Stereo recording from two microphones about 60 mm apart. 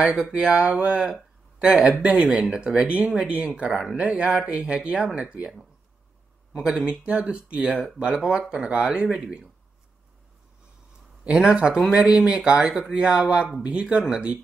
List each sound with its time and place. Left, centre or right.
0.0 s speech: centre
11.2 s speech: centre